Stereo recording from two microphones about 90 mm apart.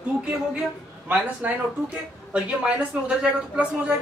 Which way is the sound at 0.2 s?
10° right (ahead or behind).